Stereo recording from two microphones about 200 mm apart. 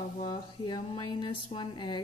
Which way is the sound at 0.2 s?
20° left (ahead or behind).